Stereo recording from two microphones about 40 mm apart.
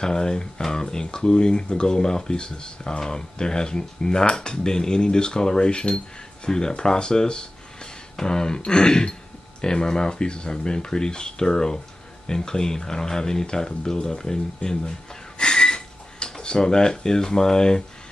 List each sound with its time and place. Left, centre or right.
0.0 s speech: centre